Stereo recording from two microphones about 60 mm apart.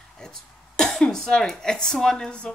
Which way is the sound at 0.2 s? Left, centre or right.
Centre.